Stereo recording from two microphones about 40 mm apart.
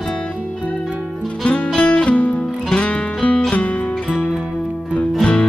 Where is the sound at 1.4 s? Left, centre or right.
Left.